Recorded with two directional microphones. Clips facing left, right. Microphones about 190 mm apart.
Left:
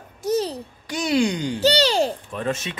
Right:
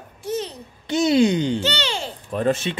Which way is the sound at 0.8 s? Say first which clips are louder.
Right 4 dB; 25° right (ahead or behind).